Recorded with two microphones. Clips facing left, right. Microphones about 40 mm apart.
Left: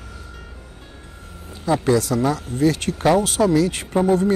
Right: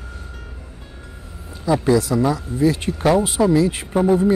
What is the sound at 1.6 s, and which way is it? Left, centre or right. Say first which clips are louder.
Speech: right 1 dB; left.